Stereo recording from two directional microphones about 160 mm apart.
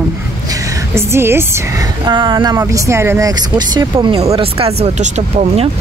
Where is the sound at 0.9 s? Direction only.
15° right (ahead or behind).